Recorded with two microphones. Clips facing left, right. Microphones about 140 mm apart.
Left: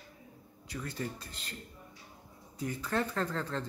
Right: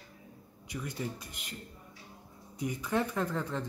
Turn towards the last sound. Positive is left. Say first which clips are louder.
# right 1 dB
turn(degrees=-15)  # may be behind; listen again after turning